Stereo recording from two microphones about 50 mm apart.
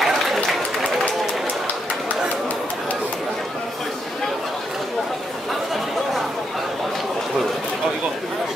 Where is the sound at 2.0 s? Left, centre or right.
Left.